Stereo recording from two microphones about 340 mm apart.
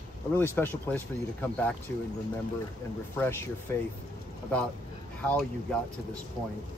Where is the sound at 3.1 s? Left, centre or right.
Centre.